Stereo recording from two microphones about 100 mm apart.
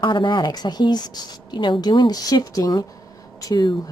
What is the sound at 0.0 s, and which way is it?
Speech, 50° left (ahead or behind).